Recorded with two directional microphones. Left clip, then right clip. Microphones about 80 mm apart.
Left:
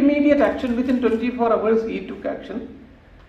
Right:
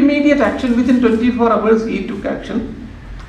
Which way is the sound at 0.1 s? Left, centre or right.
Left.